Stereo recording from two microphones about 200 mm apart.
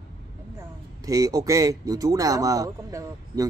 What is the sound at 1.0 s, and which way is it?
Speech, 15° right (ahead or behind).